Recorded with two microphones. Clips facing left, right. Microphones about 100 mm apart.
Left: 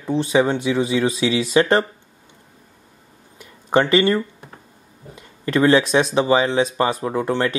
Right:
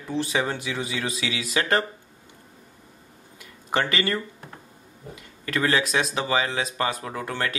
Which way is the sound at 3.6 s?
25° left (ahead or behind).